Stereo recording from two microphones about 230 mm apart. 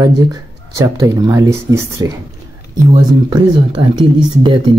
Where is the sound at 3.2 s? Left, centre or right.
Centre.